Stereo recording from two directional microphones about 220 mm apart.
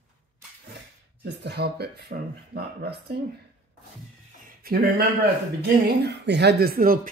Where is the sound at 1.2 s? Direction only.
50° right (ahead or behind).